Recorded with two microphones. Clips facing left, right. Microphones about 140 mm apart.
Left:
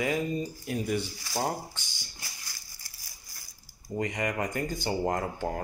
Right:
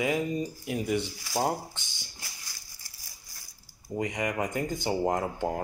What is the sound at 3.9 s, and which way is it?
Speech, 15° right (ahead or behind).